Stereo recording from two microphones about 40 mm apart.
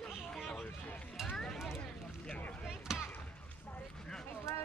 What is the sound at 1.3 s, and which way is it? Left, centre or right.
Mechanisms, centre.